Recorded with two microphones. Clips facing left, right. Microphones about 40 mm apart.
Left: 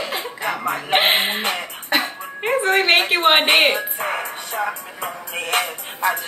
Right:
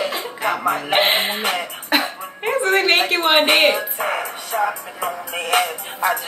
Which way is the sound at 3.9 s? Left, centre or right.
Centre.